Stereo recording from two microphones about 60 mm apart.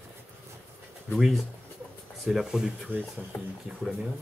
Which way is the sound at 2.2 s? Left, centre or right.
Centre.